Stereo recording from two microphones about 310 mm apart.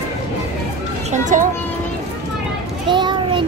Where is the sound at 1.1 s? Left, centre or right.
Right.